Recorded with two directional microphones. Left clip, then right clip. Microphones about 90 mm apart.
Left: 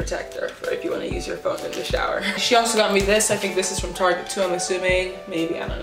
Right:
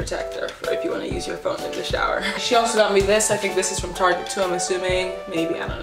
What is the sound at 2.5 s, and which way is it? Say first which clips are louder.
Speech: right 1 dB; 15° left (ahead or behind).